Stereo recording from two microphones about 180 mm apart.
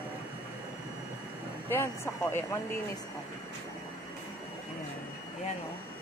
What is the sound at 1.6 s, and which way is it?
Speech, 15° left (ahead or behind).